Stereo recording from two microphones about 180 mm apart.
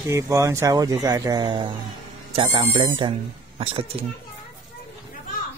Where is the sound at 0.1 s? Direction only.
15° right (ahead or behind); by 4.0 s 30° right (ahead or behind).